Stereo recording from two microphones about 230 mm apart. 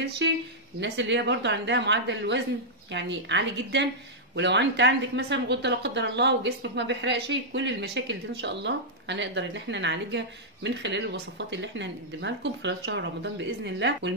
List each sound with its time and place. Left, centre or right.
0.0 s speech: right